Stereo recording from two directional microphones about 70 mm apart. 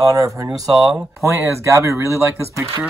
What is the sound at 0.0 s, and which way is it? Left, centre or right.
Speech, right.